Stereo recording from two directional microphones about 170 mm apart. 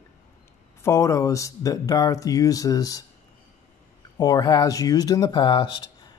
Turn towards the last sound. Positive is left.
turn(degrees=30)  # may be behind; listen again after turning